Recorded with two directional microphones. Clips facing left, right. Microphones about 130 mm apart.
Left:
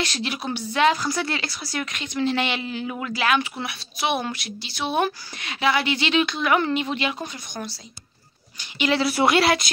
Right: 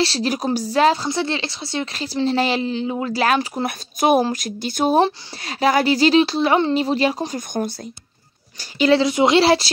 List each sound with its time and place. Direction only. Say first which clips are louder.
0.0 s speech: right 7 dB; 35° right (ahead or behind)
8.5 s speech: right 7 dB; 35° right (ahead or behind)
9.0 s speech: right 4 dB; 20° right (ahead or behind)